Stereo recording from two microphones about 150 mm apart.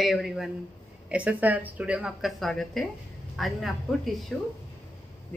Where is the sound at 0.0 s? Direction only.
Centre (ahead or behind).